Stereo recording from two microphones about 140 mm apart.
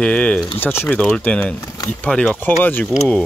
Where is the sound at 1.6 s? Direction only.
25° left (ahead or behind).